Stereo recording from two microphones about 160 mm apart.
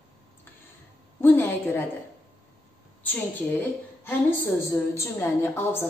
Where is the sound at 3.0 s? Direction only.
10° left (ahead or behind).